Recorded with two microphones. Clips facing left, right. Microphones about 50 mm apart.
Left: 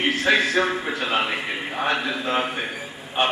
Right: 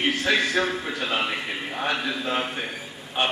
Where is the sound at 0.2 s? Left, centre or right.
Centre.